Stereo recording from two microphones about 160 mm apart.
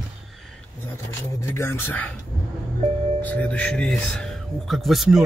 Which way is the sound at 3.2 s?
10° left (ahead or behind).